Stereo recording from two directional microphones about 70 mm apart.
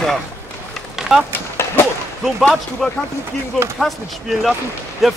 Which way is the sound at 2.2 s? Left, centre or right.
Centre.